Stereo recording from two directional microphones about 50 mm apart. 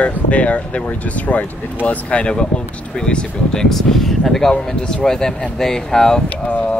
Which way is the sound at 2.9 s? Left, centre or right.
Centre.